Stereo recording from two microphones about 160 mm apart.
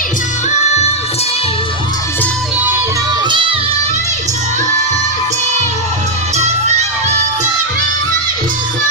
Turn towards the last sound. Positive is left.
turn(degrees=-45)  # may be behind; listen again after turning